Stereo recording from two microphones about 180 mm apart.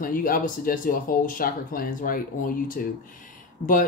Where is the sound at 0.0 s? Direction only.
50° left (ahead or behind).